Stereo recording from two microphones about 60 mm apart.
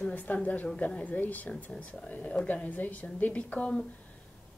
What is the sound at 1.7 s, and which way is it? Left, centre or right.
Speech, centre.